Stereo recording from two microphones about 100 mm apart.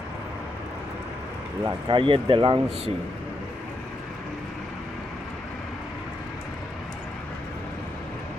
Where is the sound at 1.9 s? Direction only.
60° right (ahead or behind).